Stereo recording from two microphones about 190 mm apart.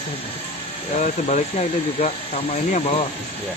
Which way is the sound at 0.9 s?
40° left (ahead or behind).